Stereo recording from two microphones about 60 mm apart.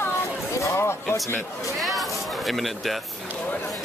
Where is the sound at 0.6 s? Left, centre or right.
Left.